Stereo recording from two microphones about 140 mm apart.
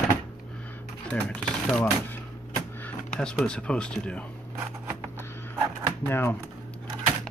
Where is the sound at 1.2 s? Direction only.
Centre (ahead or behind).